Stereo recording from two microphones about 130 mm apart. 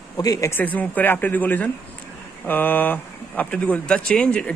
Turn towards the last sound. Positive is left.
turn(degrees=10)  # may be behind; listen again after turning